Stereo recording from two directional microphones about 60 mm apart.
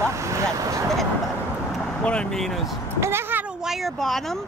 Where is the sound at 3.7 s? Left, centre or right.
Centre.